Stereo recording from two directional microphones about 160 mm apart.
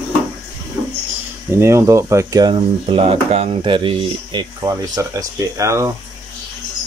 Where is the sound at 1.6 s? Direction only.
20° right (ahead or behind).